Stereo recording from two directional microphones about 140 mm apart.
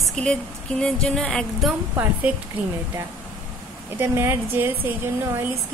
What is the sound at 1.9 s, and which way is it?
Speech, 15° right (ahead or behind).